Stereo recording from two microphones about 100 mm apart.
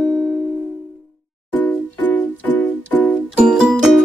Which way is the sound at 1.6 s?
15° left (ahead or behind).